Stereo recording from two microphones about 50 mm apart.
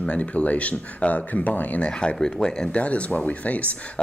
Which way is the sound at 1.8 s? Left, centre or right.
Centre.